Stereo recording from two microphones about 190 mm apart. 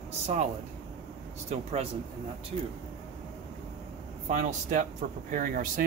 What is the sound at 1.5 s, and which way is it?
Speech, 35° right (ahead or behind).